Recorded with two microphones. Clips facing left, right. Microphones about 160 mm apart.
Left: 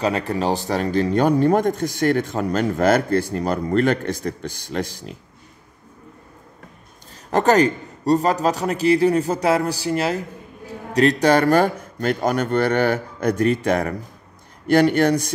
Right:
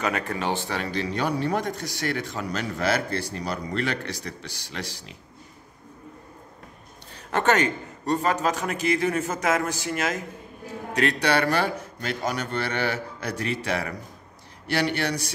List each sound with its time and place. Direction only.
0.0 s speech: 30° left (ahead or behind); by 5.1 s 50° left (ahead or behind)
7.2 s a man's voice: 35° left (ahead or behind)